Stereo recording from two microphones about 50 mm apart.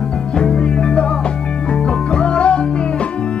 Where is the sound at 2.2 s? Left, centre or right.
Left.